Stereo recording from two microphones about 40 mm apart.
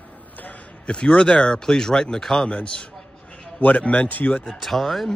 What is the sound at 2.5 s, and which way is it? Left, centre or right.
Speech, left.